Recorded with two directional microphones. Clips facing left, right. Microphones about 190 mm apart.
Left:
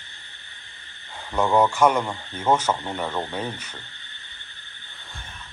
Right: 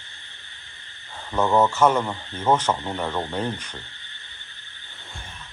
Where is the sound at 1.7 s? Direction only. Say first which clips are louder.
Even; 10° left (ahead or behind).